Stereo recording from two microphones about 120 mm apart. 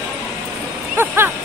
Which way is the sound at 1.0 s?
15° right (ahead or behind).